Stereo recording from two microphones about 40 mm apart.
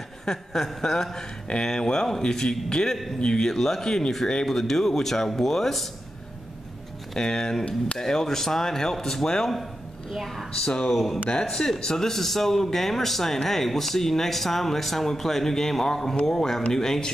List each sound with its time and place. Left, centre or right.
0.2 s speech: centre
7.2 s a woman's voice: centre